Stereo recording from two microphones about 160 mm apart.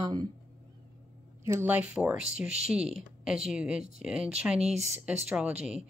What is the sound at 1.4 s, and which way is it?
Speech, 15° right (ahead or behind).